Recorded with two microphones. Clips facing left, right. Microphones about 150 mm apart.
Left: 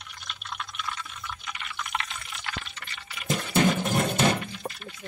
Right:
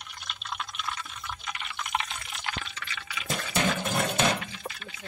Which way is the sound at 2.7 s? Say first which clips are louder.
Right 3 dB; 90° right.